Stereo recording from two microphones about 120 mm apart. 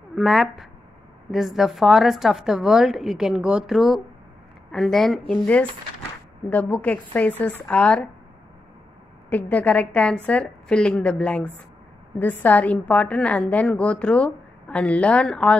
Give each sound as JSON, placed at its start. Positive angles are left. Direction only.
{"t": 0.1, "sound": "a woman's voice", "side_deg": 0}
{"t": 9.3, "sound": "a woman's voice", "side_deg": 10}